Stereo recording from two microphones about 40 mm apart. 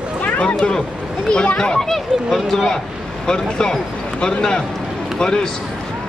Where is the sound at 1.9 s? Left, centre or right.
Centre.